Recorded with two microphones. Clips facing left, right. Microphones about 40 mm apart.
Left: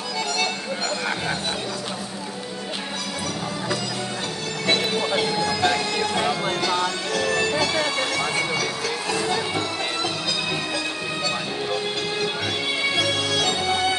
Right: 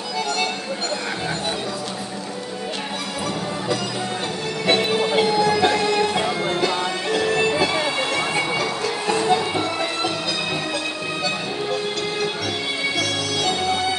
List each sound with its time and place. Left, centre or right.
4.6 s music: centre